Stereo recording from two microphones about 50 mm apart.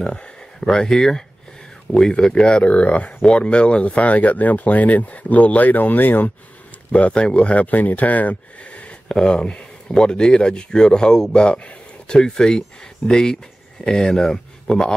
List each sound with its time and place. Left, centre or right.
0.0 s speech: centre
2.5 s speech: left
6.9 s speech: left
9.1 s speech: centre
12.2 s speech: centre